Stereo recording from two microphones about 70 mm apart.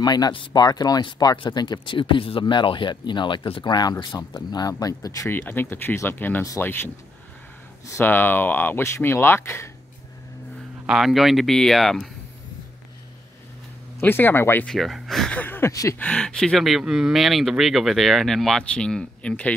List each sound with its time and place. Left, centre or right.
0.0 s speech: left
5.5 s speech: left
8.0 s speech: left
10.9 s speech: centre
14.0 s speech: left
14.7 s speech: centre
15.2 s speech: left
15.7 s speech: left
16.0 s speech: centre
16.5 s speech: centre